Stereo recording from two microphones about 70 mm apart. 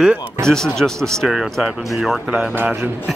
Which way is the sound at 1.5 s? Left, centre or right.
Centre.